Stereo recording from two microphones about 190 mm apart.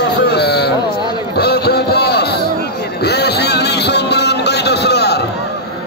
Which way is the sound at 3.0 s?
60° left (ahead or behind).